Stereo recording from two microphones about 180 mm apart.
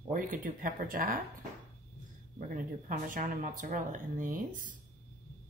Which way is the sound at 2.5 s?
50° right (ahead or behind).